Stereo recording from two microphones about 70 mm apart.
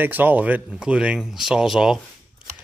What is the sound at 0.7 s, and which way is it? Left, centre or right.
Speech, centre.